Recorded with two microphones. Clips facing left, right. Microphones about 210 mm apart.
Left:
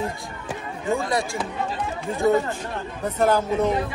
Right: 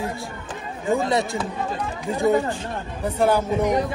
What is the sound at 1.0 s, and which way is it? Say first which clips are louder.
Speech: right 3 dB; 25° right (ahead or behind).